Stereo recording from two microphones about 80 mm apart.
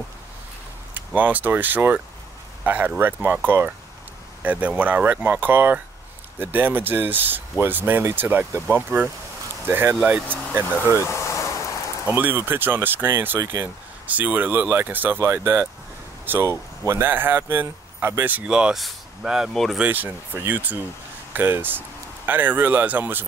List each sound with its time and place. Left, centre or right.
0.9 s speech: right
11.0 s a sound: left
12.1 s speech: right
14.0 s speech: right
17.1 s speech: right
18.4 s speech: centre
19.8 s speech: right